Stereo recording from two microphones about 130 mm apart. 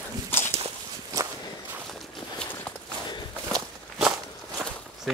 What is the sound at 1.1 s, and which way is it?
Walk, 25° right (ahead or behind).